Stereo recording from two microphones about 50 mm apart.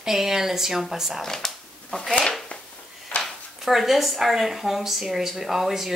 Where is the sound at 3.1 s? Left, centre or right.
Left.